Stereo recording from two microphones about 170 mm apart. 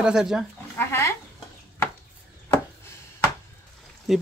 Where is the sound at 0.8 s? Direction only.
15° left (ahead or behind).